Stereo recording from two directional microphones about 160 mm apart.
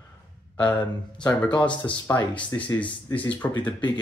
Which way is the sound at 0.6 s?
10° left (ahead or behind).